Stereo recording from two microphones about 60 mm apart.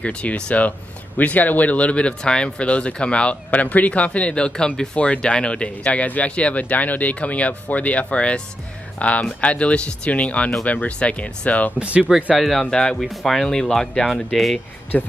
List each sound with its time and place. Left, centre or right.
0.0 s speech: left
11.8 s speech: right
12.4 s speech: centre
12.6 s speech: centre
13.0 s speech: centre
14.9 s speech: left